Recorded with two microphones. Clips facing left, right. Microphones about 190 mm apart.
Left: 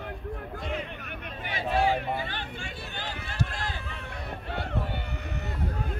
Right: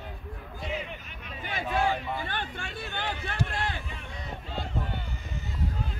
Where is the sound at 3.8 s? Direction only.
65° left (ahead or behind).